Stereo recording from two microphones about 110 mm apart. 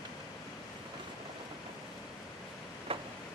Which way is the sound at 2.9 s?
55° right (ahead or behind).